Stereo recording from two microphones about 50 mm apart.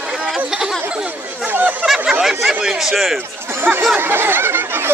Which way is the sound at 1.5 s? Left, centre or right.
Right.